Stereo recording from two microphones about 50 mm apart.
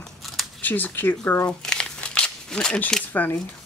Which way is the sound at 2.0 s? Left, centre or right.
Left.